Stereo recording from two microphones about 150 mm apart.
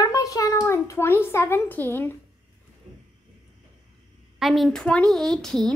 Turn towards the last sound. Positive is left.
turn(degrees=5)  # may be behind; listen again after turning